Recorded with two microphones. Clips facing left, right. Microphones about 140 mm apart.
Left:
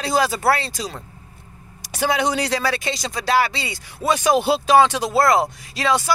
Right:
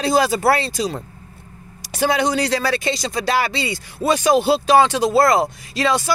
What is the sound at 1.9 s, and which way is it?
Speech, 5° left (ahead or behind).